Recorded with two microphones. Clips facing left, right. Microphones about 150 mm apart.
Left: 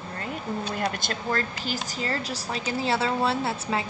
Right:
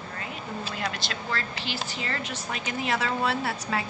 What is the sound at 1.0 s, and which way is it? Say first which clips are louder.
A woman's voice: left 4 dB; 45° left (ahead or behind).